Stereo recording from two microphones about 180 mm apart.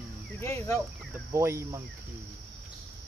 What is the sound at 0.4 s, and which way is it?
Speech, 15° left (ahead or behind).